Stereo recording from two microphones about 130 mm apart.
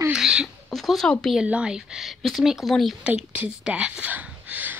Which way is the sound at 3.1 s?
10° right (ahead or behind).